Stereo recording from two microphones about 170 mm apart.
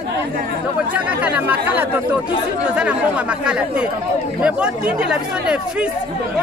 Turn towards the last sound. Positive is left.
turn(degrees=-5)  # may be behind; listen again after turning